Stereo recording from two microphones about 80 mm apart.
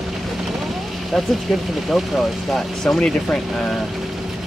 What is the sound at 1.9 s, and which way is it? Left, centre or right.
Speech, centre.